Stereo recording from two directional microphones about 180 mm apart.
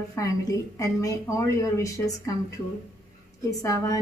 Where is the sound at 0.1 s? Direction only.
15° left (ahead or behind).